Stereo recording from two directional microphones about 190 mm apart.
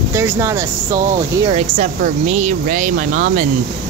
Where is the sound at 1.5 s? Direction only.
35° right (ahead or behind).